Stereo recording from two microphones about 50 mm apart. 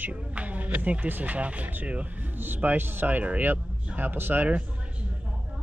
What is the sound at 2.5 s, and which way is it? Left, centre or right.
Speech, right.